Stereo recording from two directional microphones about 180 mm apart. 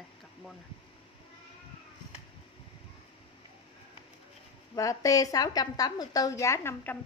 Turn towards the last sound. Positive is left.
turn(degrees=10)  # may be behind; listen again after turning